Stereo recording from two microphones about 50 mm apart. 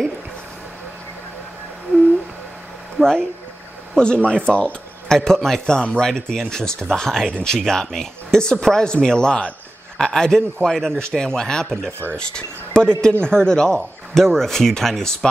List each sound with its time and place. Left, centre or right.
3.0 s speech: centre